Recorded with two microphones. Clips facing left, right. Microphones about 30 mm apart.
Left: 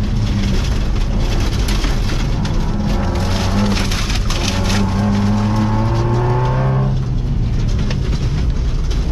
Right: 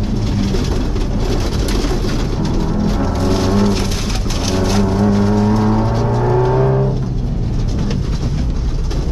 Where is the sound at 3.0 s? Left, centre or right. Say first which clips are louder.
Right 4 dB; centre.